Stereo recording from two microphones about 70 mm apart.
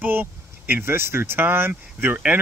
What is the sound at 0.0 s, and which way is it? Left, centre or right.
Speech, right.